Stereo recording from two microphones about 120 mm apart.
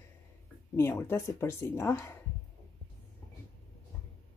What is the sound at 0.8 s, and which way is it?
Speech, 20° left (ahead or behind).